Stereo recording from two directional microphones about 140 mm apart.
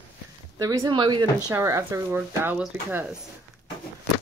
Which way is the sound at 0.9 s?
35° right (ahead or behind).